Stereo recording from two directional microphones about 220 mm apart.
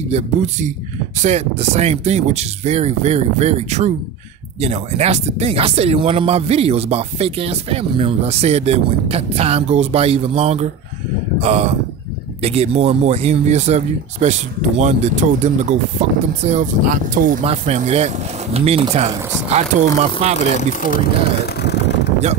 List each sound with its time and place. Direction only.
0.1 s speech: 30° right (ahead or behind)
20.2 s speech: 30° right (ahead or behind)
20.5 s speech: 35° left (ahead or behind)
21.5 s vehicle: 50° left (ahead or behind)